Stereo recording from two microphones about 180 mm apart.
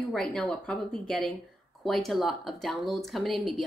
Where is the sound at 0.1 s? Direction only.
5° left (ahead or behind).